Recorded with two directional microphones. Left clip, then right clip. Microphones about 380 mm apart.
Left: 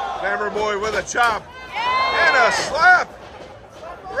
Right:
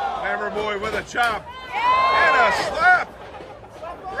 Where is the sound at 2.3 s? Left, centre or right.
Centre.